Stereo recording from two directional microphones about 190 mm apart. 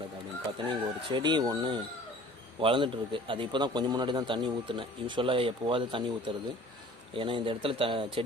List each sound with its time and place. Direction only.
0.7 s a man's voice: 25° right (ahead or behind)